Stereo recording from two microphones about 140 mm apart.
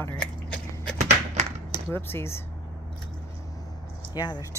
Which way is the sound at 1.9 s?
15° left (ahead or behind).